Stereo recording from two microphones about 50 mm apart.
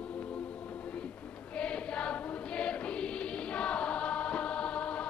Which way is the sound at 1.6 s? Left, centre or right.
Left.